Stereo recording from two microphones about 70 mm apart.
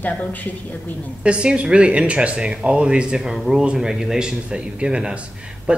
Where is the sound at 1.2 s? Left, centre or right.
Centre.